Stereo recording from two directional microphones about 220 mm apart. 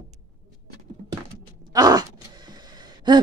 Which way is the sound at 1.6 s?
20° right (ahead or behind).